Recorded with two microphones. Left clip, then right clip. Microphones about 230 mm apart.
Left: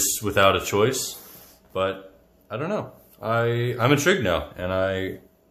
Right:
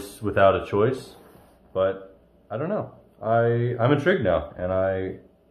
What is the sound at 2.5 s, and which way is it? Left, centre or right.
Speech, left.